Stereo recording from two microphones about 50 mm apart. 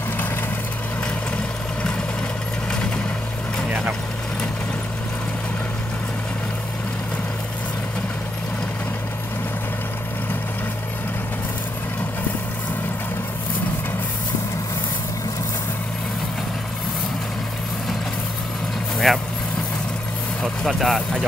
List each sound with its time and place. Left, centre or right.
1.3 s vehicle: left
19.1 s vehicle: centre
20.6 s speech: centre